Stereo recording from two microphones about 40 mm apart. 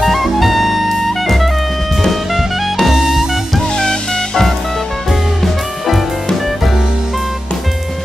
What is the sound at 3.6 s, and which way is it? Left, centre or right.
Music, centre.